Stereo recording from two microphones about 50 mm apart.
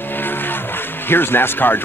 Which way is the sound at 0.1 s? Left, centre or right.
Left.